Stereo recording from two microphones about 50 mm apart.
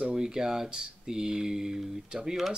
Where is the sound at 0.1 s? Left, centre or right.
Centre.